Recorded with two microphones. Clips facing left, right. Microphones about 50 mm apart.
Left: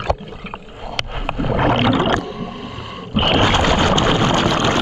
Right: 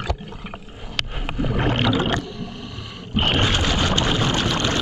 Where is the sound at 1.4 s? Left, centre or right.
Left.